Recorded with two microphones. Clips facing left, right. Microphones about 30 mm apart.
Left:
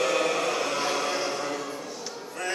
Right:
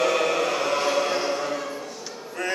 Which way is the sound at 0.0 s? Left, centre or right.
Centre.